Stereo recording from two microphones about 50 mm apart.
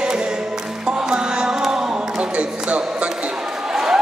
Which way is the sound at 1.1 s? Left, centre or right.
Centre.